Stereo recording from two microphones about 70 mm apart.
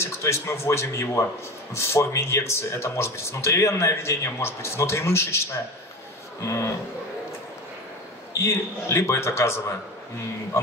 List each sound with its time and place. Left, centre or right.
0.0 s a man's voice: left
8.4 s a man's voice: left